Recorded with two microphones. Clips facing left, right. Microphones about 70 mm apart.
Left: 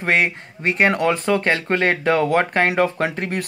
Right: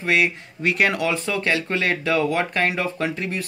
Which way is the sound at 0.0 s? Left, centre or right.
Left.